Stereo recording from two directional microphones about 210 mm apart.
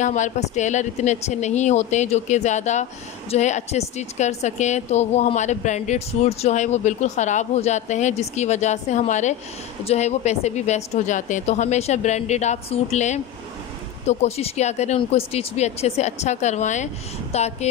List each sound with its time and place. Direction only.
0.0 s speech: 35° left (ahead or behind)